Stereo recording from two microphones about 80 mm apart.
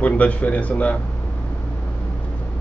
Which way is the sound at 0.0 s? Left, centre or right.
Centre.